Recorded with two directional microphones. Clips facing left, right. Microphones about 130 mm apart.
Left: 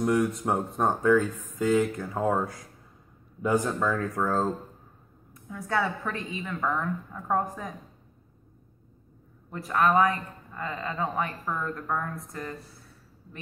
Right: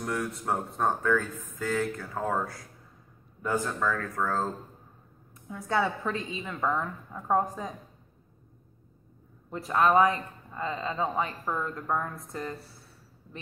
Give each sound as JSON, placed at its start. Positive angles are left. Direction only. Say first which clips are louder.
{"t": 0.0, "sound": "speech", "louder": "left 7 dB", "side_deg": 15}
{"t": 5.5, "sound": "speech", "louder": "even", "side_deg": -25}
{"t": 9.5, "sound": "speech", "louder": "even", "side_deg": -25}